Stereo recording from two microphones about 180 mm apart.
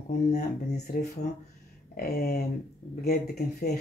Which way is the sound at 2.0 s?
55° left (ahead or behind).